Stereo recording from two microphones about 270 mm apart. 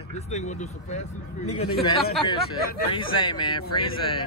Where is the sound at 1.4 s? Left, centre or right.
Left.